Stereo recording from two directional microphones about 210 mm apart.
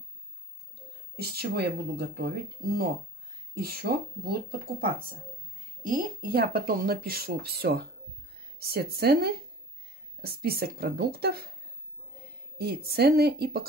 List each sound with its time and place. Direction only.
1.1 s speech: 50° right (ahead or behind)
12.5 s speech: 50° right (ahead or behind)